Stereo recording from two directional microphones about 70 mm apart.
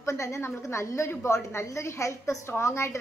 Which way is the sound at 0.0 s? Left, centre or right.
Left.